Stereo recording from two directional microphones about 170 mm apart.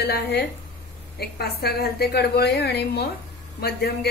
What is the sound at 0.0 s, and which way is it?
A woman's voice, 70° left (ahead or behind).